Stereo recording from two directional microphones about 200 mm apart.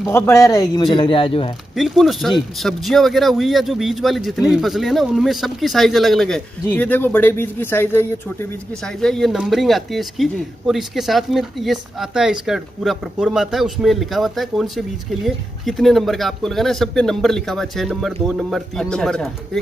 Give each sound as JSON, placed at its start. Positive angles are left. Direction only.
{"t": 0.1, "sound": "speech", "side_deg": 15}
{"t": 1.8, "sound": "speech", "side_deg": 0}
{"t": 9.0, "sound": "speech", "side_deg": 0}